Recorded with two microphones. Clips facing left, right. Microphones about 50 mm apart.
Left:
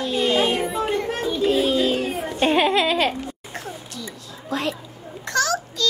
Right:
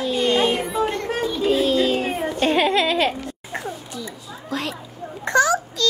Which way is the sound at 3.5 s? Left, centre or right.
Centre.